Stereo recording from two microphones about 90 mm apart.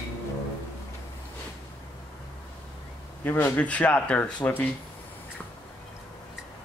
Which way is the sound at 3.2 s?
20° left (ahead or behind).